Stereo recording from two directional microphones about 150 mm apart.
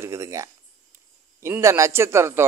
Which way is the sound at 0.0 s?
20° right (ahead or behind).